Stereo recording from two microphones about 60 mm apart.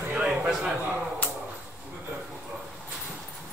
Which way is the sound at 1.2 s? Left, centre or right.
Left.